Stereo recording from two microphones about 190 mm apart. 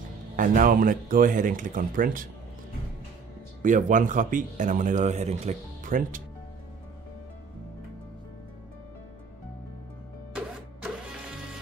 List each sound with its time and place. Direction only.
0.4 s speech: 45° right (ahead or behind)
3.6 s speech: 40° right (ahead or behind)
10.3 s printer: 5° right (ahead or behind)